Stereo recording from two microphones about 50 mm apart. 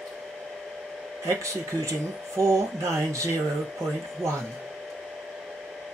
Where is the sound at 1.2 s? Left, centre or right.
Right.